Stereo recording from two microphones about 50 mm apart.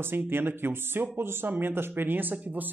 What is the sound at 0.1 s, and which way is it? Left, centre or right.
Speech, right.